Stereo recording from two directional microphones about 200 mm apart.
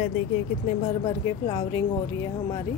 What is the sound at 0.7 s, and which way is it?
Speech, 30° left (ahead or behind).